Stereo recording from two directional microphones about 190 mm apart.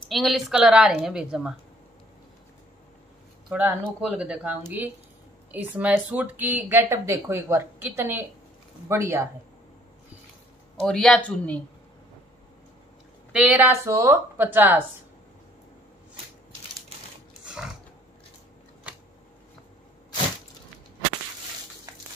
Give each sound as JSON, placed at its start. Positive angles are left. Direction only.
{"t": 0.1, "sound": "a woman's voice", "side_deg": 0}
{"t": 3.4, "sound": "speech", "side_deg": -10}
{"t": 10.8, "sound": "a woman's voice", "side_deg": 5}
{"t": 13.3, "sound": "speech", "side_deg": -10}
{"t": 21.9, "sound": "a sound", "side_deg": -20}